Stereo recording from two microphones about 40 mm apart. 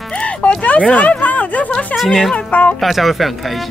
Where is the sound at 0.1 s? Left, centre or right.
Left.